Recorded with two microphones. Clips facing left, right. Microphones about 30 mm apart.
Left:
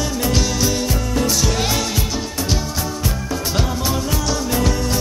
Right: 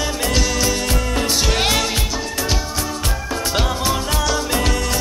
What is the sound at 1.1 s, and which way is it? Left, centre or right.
Music, right.